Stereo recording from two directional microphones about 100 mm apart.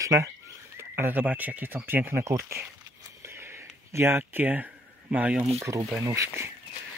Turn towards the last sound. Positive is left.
turn(degrees=-25)  # may be behind; listen again after turning